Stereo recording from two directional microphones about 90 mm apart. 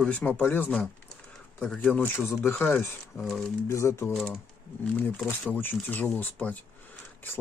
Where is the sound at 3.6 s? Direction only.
30° left (ahead or behind).